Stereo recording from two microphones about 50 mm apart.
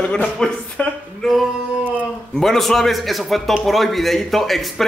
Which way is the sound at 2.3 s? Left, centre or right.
Centre.